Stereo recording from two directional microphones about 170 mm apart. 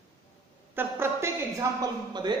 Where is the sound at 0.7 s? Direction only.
15° right (ahead or behind).